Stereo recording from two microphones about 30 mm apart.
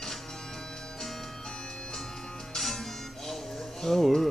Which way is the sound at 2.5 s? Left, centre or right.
Centre.